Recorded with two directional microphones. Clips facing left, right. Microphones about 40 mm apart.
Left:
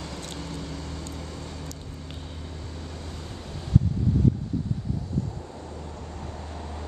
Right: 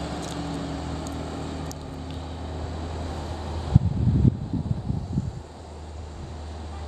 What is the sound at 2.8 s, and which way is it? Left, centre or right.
Vehicle, centre.